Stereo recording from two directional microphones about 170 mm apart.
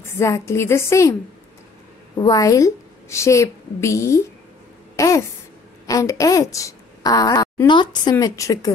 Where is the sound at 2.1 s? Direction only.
20° left (ahead or behind).